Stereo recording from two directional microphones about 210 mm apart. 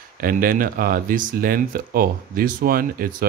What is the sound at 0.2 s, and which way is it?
Speech, 40° right (ahead or behind).